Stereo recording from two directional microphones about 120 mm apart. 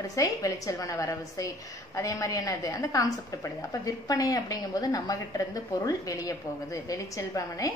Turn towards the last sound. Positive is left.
turn(degrees=25)  # may be behind; listen again after turning